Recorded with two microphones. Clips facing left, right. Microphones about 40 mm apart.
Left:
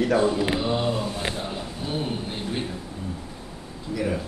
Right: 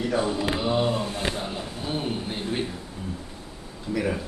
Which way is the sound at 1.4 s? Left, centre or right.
Centre.